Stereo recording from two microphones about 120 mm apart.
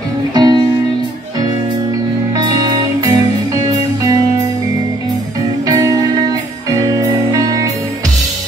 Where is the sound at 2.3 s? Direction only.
35° right (ahead or behind).